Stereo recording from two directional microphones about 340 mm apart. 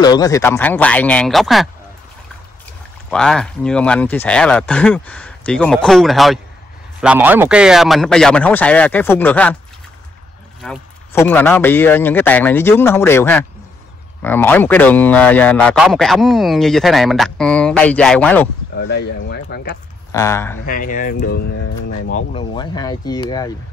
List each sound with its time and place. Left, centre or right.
0.0 s speech: centre
3.1 s speech: centre
10.6 s speech: centre
18.8 s speech: left
20.1 s speech: centre
20.6 s speech: left